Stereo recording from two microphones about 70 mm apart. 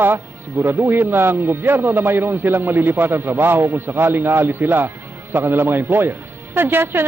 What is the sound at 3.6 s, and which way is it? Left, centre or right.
A man's voice, right.